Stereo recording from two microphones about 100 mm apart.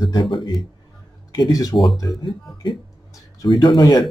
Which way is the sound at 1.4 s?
35° left (ahead or behind).